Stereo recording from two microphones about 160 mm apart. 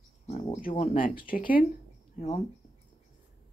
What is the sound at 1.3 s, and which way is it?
Speech, 60° left (ahead or behind).